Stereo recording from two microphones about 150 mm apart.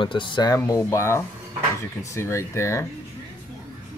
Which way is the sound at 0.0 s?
35° left (ahead or behind).